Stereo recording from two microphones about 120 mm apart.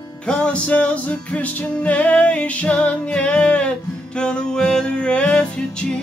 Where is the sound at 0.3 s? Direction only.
10° left (ahead or behind).